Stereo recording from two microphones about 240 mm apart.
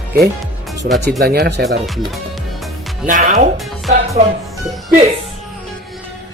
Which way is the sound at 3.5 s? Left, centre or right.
Centre.